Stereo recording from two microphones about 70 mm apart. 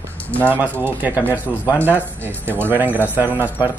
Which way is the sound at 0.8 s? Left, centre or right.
Right.